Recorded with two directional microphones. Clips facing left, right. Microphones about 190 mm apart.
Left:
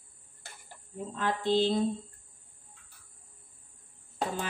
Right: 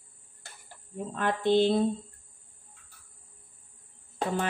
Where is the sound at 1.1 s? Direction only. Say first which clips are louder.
Right 3 dB; 60° right (ahead or behind).